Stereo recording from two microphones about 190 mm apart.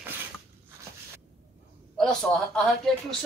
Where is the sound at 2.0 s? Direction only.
5° left (ahead or behind).